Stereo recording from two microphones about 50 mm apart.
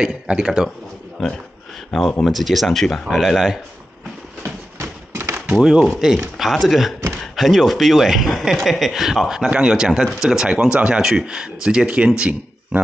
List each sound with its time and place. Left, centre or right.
0.0 s a man's voice: centre
1.9 s speech: centre
4.4 s a sound: right
5.6 s speech: centre
12.2 s speech: right